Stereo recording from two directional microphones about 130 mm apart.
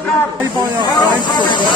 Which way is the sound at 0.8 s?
30° left (ahead or behind).